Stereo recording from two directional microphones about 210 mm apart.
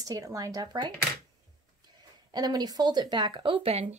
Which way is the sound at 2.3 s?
20° right (ahead or behind).